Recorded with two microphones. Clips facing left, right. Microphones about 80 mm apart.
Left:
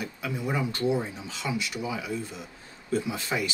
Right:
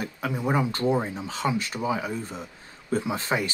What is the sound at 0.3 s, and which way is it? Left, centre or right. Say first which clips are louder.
Speech: right 4 dB; right.